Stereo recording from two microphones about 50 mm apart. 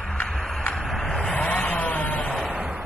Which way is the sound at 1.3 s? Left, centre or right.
Left.